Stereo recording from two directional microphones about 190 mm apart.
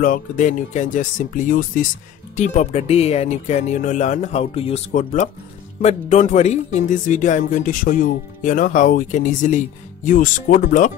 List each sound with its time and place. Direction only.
0.0 s speech: 40° left (ahead or behind)